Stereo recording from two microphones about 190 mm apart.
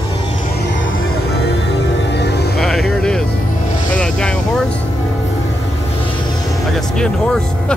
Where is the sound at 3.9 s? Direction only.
5° left (ahead or behind).